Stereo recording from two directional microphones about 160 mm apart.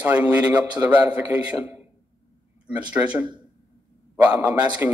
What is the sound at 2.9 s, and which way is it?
A man's voice, 10° right (ahead or behind).